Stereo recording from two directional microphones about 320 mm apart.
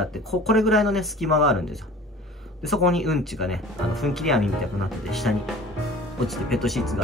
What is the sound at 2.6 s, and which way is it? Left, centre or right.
Speech, centre.